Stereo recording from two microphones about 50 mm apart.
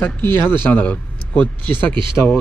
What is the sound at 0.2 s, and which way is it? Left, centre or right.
Speech, left.